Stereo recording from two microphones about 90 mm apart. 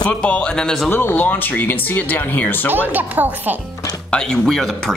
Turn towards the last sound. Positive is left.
turn(degrees=5)  # may be behind; listen again after turning